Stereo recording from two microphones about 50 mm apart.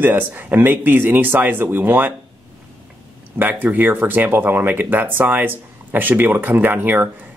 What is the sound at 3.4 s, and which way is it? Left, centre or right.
Speech, right.